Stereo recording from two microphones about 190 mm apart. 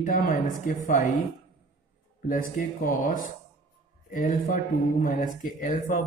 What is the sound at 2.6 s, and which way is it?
Speech, 45° left (ahead or behind).